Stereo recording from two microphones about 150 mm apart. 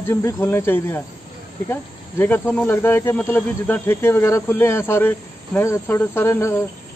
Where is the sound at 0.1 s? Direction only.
20° left (ahead or behind).